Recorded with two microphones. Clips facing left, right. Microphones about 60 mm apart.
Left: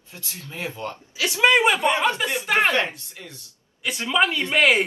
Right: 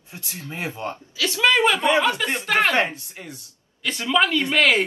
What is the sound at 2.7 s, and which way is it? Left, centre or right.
Speech, right.